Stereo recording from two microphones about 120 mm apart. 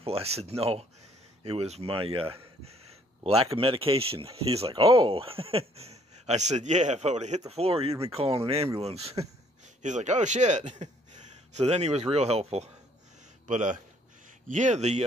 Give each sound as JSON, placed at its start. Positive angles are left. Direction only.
{"t": 0.0, "sound": "speech", "side_deg": -55}
{"t": 9.8, "sound": "speech", "side_deg": -85}
{"t": 13.5, "sound": "a man's voice", "side_deg": -90}